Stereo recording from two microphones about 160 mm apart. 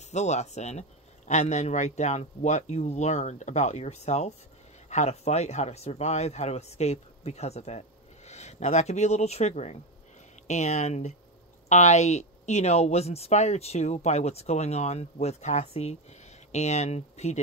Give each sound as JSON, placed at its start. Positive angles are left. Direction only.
{"t": 0.0, "sound": "speech", "side_deg": 45}